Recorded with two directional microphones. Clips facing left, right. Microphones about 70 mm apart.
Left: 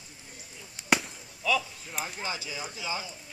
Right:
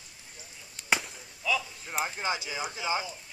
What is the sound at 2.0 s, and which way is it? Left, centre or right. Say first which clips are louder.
Speech: right 4 dB; right.